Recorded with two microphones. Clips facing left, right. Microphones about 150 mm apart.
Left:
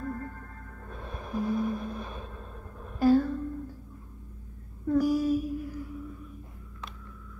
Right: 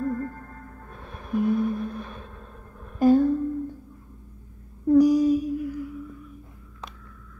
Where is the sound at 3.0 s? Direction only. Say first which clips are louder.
Right 4 dB; 20° right (ahead or behind).